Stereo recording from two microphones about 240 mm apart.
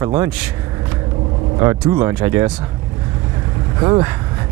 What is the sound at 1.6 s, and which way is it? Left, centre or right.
Speech, centre.